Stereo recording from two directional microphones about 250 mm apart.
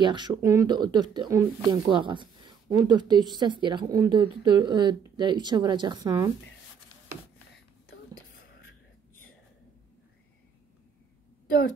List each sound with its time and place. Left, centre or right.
0.0 s speech: centre